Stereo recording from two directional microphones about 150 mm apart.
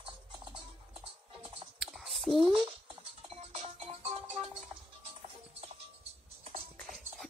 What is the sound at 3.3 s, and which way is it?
Music, 45° right (ahead or behind).